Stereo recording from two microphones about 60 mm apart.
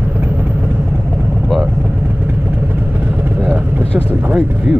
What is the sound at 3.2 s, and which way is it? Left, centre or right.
Vehicle, right.